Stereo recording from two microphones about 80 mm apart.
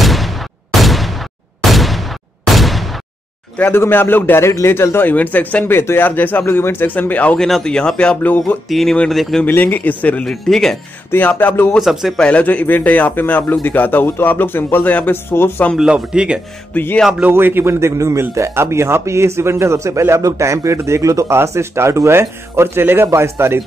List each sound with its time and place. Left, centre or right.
0.0 s gunshot: centre
0.7 s a sound: centre
3.5 s speech: left
7.3 s speech: centre; by 8.5 s left
8.6 s speech: centre
9.5 s speech: left
10.2 s speech: centre
11.1 s speech: left
11.8 s speech: centre
12.2 s speech: centre
15.8 s speech: centre
16.7 s speech: left
17.3 s a man's voice: right